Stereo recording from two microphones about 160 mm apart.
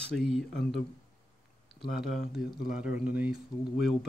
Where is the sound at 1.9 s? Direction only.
5° right (ahead or behind).